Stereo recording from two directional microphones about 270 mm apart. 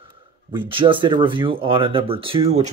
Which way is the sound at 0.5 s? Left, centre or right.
Centre.